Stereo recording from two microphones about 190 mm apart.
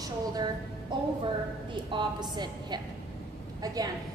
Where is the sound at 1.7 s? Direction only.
25° right (ahead or behind).